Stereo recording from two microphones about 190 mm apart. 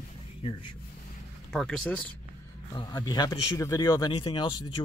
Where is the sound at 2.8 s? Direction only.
20° left (ahead or behind).